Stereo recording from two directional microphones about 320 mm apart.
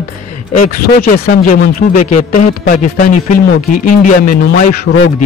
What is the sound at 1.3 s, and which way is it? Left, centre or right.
Speech, left.